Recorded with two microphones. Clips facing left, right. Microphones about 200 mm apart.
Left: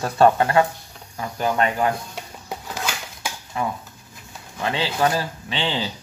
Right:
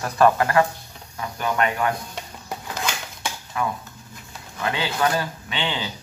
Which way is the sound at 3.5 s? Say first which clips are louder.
Even; 25° left (ahead or behind).